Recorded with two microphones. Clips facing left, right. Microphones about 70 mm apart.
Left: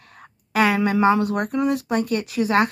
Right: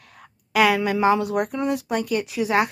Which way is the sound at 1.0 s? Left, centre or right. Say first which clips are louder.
Right 1 dB; left.